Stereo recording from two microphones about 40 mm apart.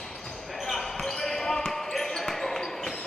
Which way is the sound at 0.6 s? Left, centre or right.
Centre.